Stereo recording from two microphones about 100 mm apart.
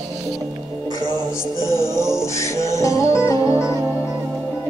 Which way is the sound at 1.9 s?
30° left (ahead or behind).